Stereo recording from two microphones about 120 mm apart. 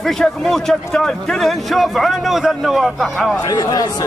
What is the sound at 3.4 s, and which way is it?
Speech, 30° left (ahead or behind).